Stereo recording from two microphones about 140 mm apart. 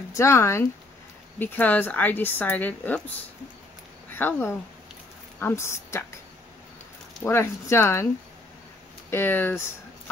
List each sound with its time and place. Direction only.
0.1 s a woman's voice: 20° left (ahead or behind)
4.1 s speech: 15° left (ahead or behind)
7.2 s speech: 20° left (ahead or behind)
9.1 s a woman's voice: 15° left (ahead or behind)